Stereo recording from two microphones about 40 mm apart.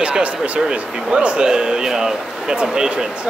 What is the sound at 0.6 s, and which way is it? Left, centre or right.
Speech, right.